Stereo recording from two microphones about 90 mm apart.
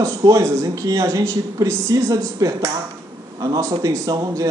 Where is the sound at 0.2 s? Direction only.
35° right (ahead or behind).